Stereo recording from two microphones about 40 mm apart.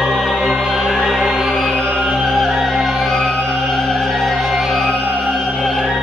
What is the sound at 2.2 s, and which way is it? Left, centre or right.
Music, centre.